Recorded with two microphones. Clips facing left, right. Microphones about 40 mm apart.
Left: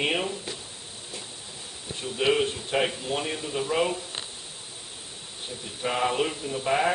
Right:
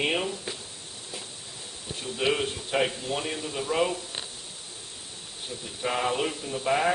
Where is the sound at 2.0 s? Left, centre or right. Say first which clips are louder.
Left 3 dB; centre.